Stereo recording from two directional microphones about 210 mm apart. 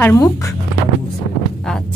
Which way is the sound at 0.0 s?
15° left (ahead or behind).